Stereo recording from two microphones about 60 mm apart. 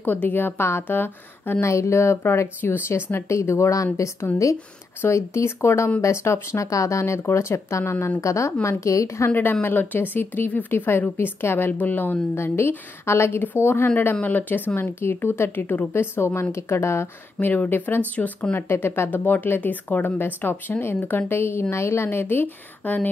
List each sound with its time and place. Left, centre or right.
0.0 s speech: left
1.6 s a woman's voice: left
6.7 s a woman's voice: left
9.3 s speech: left
12.4 s a woman's voice: left
14.2 s speech: left
15.6 s speech: left
15.9 s a woman's voice: left
17.6 s speech: left
18.7 s speech: left
21.3 s a woman's voice: left